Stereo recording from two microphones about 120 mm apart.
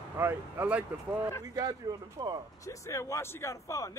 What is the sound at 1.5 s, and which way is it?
Speech, 30° right (ahead or behind).